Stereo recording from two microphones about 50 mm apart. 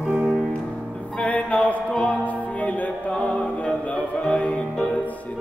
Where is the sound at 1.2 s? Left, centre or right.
Left.